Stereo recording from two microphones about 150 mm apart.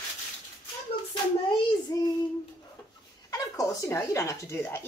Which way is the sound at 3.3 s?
25° left (ahead or behind).